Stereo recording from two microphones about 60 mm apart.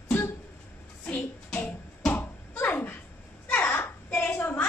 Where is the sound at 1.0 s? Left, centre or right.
Left.